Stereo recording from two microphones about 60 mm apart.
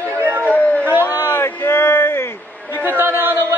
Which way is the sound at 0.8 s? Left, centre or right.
Right.